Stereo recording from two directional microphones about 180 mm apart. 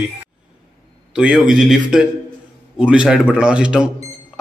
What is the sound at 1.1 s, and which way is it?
A man's voice, 5° right (ahead or behind).